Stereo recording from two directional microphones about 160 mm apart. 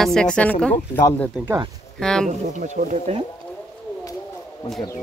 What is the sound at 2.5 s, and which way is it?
Speech, 50° right (ahead or behind).